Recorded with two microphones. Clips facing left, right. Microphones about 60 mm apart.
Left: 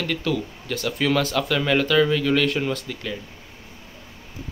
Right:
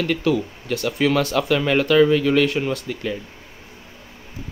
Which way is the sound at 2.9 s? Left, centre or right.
Centre.